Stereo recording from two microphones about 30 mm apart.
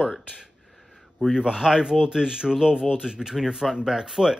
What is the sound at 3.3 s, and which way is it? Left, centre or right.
Speech, centre.